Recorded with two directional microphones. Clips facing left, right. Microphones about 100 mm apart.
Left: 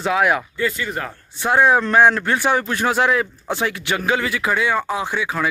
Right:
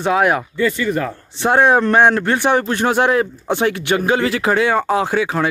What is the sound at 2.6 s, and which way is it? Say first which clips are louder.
Speech: right 3 dB; 40° right (ahead or behind).